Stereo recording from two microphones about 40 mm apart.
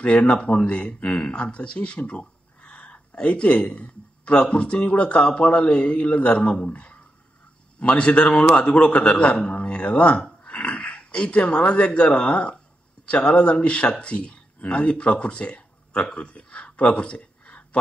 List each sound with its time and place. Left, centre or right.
0.0 s speech: left